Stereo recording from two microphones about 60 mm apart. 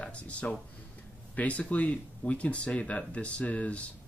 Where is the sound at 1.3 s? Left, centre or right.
Left.